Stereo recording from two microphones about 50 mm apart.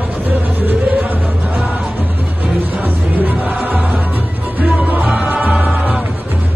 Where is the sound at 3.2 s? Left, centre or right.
Right.